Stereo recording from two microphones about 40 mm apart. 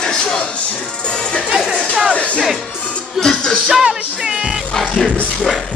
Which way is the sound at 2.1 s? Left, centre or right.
Left.